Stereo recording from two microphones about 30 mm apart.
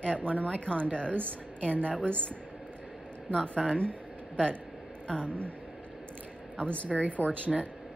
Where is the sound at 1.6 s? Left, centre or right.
Left.